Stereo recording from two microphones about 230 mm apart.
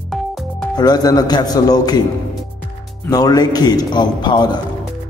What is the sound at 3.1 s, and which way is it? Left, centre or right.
A man's voice, centre.